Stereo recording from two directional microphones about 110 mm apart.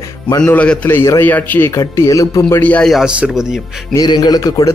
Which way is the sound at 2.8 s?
Centre (ahead or behind).